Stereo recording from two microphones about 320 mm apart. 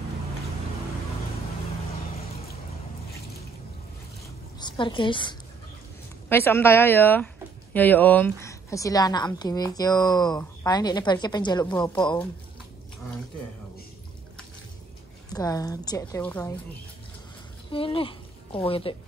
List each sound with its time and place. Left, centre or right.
4.6 s a woman's voice: centre
15.3 s a woman's voice: centre
17.6 s a woman's voice: centre